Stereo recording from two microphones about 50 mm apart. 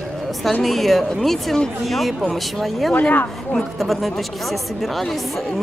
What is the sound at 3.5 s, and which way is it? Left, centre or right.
Speech, centre.